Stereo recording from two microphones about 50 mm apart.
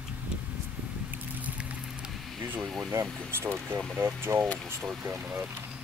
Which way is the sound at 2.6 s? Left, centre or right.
Centre.